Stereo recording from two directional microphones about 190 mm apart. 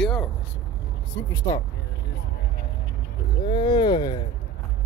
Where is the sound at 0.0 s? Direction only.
5° left (ahead or behind).